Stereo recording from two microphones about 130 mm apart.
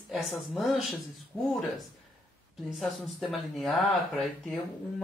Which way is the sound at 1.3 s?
25° left (ahead or behind).